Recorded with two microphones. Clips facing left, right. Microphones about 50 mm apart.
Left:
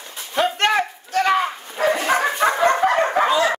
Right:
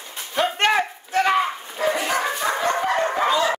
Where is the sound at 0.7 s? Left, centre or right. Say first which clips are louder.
Left 1 dB; centre.